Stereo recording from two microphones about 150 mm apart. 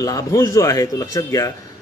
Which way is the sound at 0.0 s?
25° left (ahead or behind).